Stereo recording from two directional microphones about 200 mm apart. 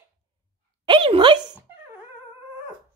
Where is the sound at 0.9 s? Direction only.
25° right (ahead or behind).